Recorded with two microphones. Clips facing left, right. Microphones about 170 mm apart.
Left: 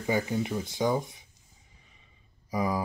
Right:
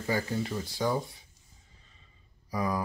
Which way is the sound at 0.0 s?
15° left (ahead or behind).